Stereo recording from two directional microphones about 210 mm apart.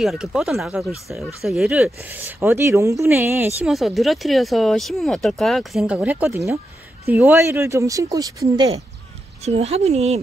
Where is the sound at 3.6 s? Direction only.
Centre (ahead or behind); by 8.7 s 15° right (ahead or behind).